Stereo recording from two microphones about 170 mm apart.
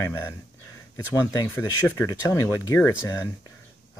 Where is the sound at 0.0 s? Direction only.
15° left (ahead or behind).